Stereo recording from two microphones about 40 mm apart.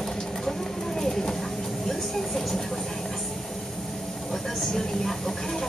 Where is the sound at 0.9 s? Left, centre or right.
Centre.